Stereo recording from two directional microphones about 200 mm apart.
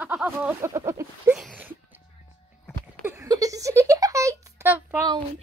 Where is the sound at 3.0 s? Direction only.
15° right (ahead or behind).